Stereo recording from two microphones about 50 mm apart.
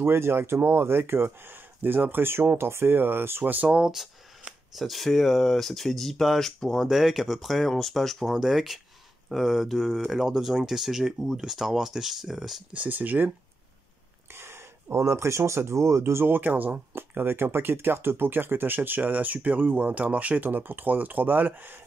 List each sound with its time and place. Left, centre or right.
0.0 s speech: right
3.6 s speech: right
4.7 s speech: centre
12.7 s speech: right
14.3 s speech: right
16.3 s speech: right